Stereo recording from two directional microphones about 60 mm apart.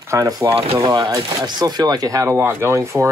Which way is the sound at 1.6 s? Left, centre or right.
Right.